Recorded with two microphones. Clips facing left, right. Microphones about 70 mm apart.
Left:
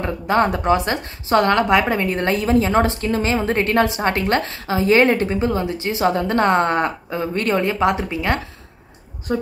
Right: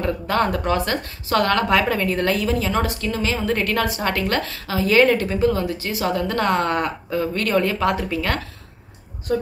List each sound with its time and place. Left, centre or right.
0.0 s a woman's voice: left